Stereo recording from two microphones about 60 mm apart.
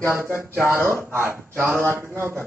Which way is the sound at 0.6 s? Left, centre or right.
Right.